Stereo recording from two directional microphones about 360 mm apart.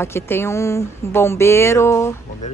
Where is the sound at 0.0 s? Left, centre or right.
Centre.